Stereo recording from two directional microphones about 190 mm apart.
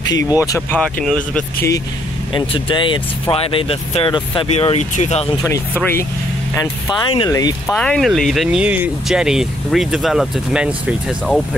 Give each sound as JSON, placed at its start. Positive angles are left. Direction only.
{"t": 0.4, "sound": "speech", "side_deg": 15}
{"t": 2.3, "sound": "speech", "side_deg": 25}
{"t": 5.4, "sound": "speech", "side_deg": 15}
{"t": 7.6, "sound": "speech", "side_deg": 5}